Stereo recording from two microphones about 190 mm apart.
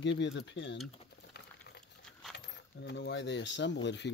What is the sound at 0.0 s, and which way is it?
Speech, 70° left (ahead or behind).